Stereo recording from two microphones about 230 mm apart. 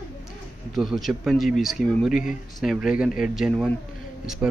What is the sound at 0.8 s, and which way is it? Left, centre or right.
A man's voice, centre.